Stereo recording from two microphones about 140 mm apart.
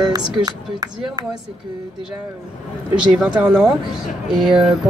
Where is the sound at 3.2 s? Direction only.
5° right (ahead or behind).